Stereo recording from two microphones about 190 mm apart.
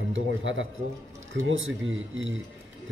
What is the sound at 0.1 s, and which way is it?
A man's voice, 90° right.